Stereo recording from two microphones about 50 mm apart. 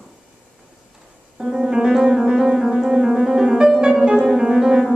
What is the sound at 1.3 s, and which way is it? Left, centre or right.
Piano, centre.